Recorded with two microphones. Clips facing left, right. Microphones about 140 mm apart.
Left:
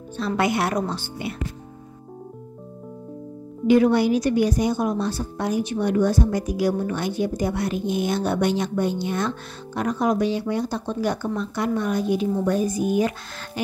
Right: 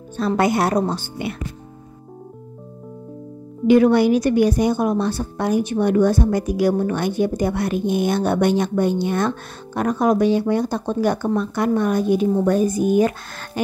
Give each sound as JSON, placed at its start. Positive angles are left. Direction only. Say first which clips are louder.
{"t": 0.4, "sound": "a woman's voice", "louder": "right 4 dB", "side_deg": -40}
{"t": 3.6, "sound": "a woman's voice", "louder": "right 3 dB", "side_deg": -65}